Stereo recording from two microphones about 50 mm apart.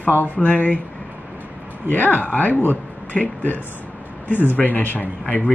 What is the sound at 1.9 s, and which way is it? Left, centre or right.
Speech, left.